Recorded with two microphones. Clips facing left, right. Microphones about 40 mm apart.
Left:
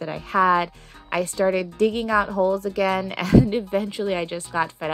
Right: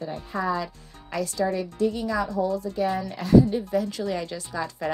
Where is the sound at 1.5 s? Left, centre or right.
Left.